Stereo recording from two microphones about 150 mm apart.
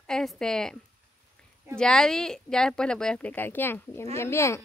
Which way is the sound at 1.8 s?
5° left (ahead or behind).